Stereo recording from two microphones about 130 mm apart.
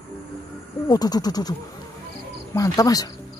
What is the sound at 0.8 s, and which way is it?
Speech, 30° left (ahead or behind).